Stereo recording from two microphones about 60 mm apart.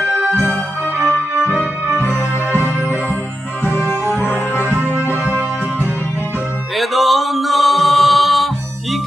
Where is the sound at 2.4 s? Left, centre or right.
Right.